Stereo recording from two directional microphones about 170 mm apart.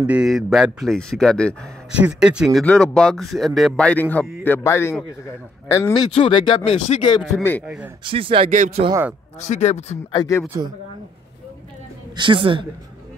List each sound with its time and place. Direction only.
0.0 s speech: 5° right (ahead or behind)
1.9 s speech: 5° right (ahead or behind); by 6.0 s 15° left (ahead or behind)
6.1 s speech: 30° left (ahead or behind)
7.6 s a man's voice: 10° right (ahead or behind)
8.0 s speech: 30° right (ahead or behind)
8.5 s speech: 50° right (ahead or behind)
9.4 s speech: 45° left (ahead or behind)
10.1 s speech: 20° left (ahead or behind)
12.2 s a woman's voice: 30° right (ahead or behind)